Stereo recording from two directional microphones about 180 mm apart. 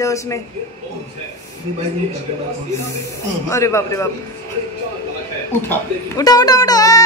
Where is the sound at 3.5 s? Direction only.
15° left (ahead or behind).